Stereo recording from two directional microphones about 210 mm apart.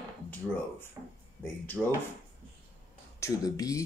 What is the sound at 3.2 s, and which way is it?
Speech, 15° left (ahead or behind).